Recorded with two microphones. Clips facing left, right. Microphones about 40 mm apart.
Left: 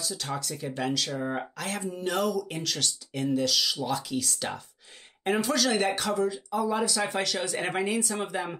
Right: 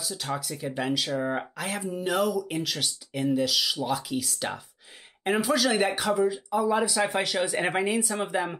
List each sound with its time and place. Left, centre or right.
0.0 s speech: centre